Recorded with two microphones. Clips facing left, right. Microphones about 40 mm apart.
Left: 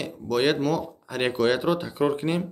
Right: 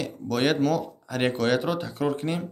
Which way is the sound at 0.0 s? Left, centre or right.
Centre.